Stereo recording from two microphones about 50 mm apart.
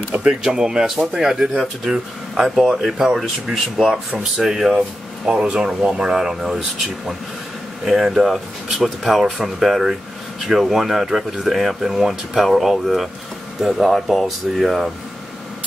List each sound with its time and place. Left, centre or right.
0.1 s speech: right; by 4.7 s centre
4.7 s speech: centre
7.8 s speech: centre